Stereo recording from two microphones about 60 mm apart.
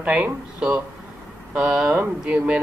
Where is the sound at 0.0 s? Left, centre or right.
Centre.